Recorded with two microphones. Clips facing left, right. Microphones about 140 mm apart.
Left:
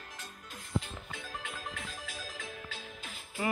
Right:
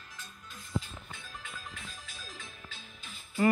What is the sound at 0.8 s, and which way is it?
Music, 75° left (ahead or behind).